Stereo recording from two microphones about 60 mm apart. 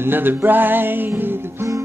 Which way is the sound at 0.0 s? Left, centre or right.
Right.